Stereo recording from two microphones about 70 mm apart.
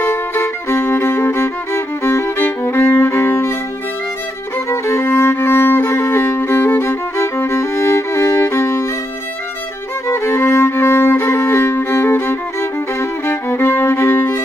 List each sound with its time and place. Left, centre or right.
0.0 s music: left
4.6 s violin: left
10.0 s music: left